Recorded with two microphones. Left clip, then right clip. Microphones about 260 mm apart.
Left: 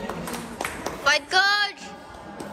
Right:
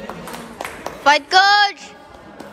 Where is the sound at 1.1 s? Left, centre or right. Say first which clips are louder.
Right 8 dB; centre.